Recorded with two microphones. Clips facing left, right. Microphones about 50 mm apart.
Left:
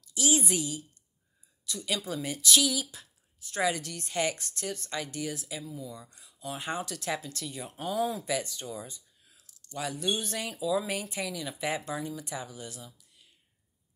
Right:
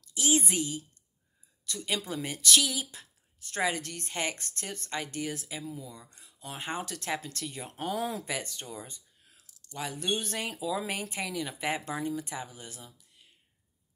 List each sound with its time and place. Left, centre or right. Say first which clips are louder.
0.1 s speech: even; right
1.9 s speech: left 1 dB; right
2.4 s speech: even; right
2.7 s a sound: left 2 dB; right
3.6 s speech: left 1 dB; right
6.8 s speech: left 1 dB; right
8.3 s speech: left 4 dB; right
8.7 s a sound: left 2 dB; right
9.9 s speech: right 1 dB; right